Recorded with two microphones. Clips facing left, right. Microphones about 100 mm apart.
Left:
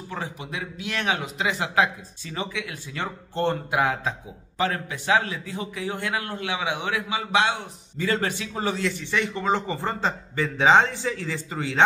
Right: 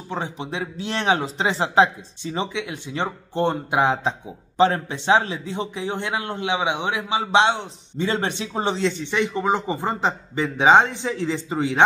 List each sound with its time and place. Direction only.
0.1 s a man's voice: 25° right (ahead or behind)